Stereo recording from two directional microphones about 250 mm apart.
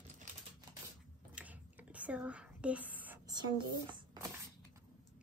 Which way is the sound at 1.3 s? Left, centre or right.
Centre.